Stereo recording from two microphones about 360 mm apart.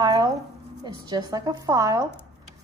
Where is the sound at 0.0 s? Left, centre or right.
Centre.